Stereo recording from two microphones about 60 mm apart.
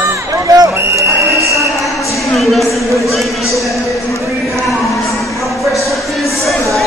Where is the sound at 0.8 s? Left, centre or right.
Right.